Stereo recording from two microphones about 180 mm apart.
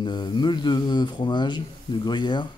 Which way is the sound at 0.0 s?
25° left (ahead or behind).